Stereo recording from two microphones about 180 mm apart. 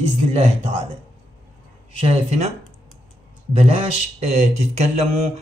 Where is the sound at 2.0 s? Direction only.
35° right (ahead or behind).